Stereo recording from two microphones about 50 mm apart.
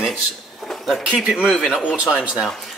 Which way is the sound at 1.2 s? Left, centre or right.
Centre.